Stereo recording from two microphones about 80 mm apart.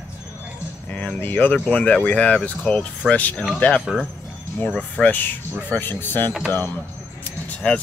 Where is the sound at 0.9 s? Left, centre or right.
Centre.